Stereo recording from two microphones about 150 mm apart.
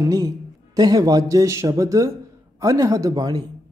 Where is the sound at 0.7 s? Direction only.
25° right (ahead or behind).